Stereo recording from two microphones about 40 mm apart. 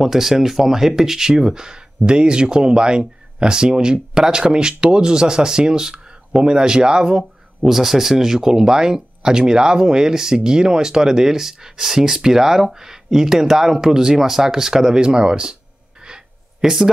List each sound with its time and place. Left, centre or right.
0.0 s speech: centre
7.7 s speech: centre
16.6 s speech: centre